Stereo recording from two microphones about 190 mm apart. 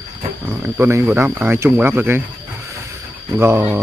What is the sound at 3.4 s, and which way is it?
Speech, 10° right (ahead or behind).